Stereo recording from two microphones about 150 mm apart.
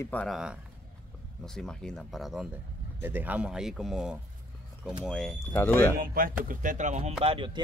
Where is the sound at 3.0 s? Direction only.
10° right (ahead or behind).